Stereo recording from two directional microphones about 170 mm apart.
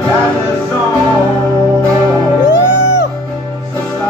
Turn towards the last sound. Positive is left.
turn(degrees=90)